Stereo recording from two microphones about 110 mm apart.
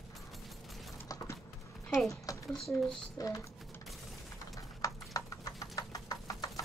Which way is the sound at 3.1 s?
30° left (ahead or behind).